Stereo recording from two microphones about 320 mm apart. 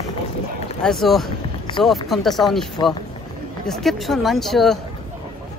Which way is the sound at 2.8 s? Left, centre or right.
Centre.